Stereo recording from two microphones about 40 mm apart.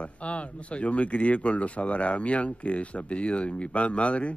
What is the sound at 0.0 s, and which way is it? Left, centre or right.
Speech, left.